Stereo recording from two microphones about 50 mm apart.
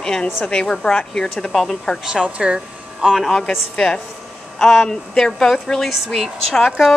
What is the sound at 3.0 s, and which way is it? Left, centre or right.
Speech, centre.